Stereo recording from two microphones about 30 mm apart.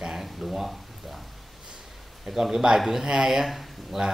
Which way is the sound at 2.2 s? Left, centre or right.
Centre.